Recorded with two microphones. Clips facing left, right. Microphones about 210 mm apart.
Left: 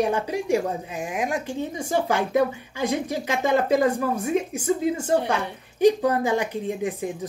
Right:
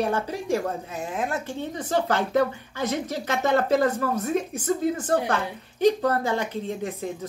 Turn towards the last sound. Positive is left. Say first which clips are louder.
# left 3 dB
turn(degrees=15)  # may be behind; listen again after turning